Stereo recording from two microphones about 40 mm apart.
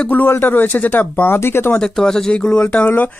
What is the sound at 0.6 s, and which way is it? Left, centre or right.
Speech, left.